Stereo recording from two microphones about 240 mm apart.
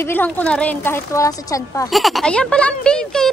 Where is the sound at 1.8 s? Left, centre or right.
Centre.